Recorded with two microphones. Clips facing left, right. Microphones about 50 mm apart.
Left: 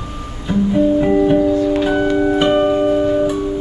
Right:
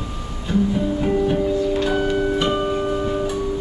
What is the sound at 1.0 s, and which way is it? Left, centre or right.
Music, left.